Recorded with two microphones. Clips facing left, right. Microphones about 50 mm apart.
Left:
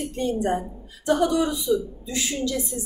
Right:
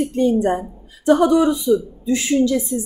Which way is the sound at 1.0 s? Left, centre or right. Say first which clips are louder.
Right 7 dB; right.